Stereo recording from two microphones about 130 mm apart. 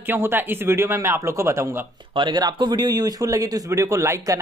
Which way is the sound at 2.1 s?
35° right (ahead or behind).